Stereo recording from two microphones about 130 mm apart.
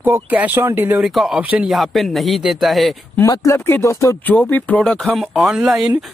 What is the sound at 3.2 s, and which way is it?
Speech, 20° left (ahead or behind).